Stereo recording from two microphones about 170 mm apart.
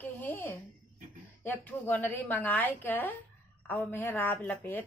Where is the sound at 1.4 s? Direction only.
10° left (ahead or behind).